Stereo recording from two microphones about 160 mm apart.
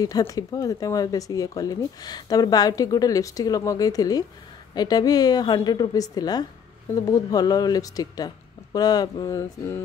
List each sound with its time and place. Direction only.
0.3 s speech: 20° left (ahead or behind)